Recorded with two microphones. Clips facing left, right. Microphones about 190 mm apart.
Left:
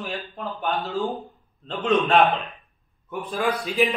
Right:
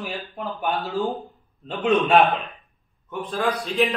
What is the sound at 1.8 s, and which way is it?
Speech, centre (ahead or behind).